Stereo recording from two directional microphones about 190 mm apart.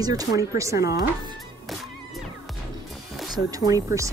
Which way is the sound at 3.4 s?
20° right (ahead or behind).